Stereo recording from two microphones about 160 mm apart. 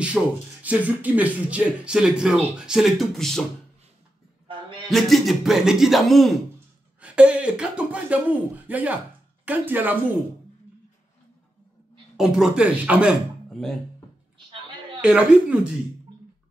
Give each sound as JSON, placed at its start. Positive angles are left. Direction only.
{"t": 0.0, "sound": "speech", "side_deg": -10}
{"t": 4.5, "sound": "music", "side_deg": -30}
{"t": 4.8, "sound": "speech", "side_deg": 0}
{"t": 12.2, "sound": "speech", "side_deg": -5}
{"t": 13.5, "sound": "a sound", "side_deg": 5}
{"t": 15.0, "sound": "a man's voice", "side_deg": -5}